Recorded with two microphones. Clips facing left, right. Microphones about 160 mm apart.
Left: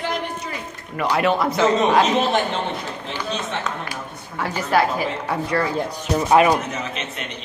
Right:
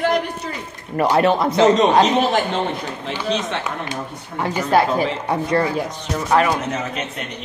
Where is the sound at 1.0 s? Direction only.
35° right (ahead or behind).